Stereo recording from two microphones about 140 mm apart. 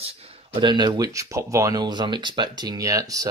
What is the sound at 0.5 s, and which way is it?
Speech, 30° right (ahead or behind).